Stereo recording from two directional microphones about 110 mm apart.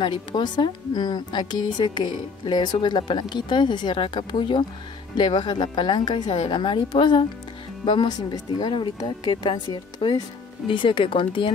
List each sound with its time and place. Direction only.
0.0 s speech: 45° left (ahead or behind)